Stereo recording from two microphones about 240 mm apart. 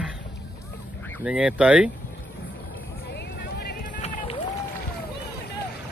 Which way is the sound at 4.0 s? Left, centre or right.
Left.